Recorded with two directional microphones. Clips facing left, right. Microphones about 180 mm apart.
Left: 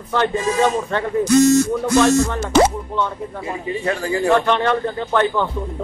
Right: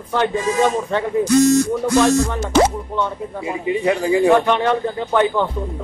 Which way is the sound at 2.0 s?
10° right (ahead or behind).